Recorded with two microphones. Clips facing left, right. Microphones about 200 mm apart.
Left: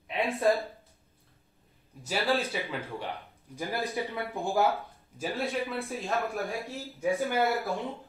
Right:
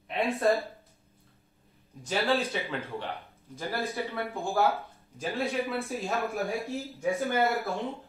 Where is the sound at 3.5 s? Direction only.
15° left (ahead or behind).